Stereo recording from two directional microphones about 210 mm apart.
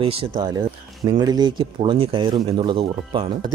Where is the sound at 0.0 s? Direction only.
25° right (ahead or behind).